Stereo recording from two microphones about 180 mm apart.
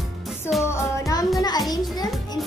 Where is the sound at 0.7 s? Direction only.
15° left (ahead or behind).